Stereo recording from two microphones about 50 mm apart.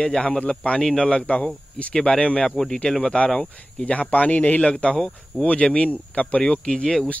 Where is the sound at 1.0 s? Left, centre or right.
Left.